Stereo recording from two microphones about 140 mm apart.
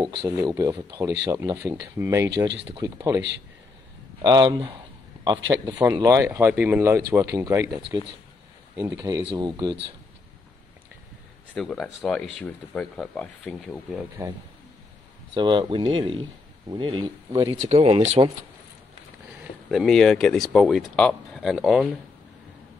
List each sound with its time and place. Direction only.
0.2 s speech: 25° right (ahead or behind)
4.2 s a man's voice: 30° right (ahead or behind)
11.5 s speech: centre (ahead or behind)
15.3 s speech: 35° right (ahead or behind)
17.6 s speech: 50° right (ahead or behind)
19.7 s speech: centre (ahead or behind)